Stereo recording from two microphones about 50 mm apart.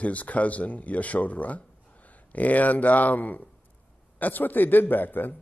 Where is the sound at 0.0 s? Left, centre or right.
Left.